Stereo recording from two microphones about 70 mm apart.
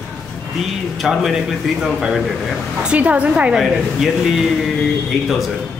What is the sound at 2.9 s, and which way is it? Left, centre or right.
Speech, centre.